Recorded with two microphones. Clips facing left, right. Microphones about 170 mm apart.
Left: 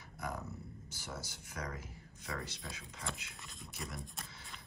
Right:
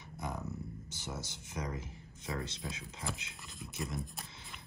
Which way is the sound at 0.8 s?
20° right (ahead or behind).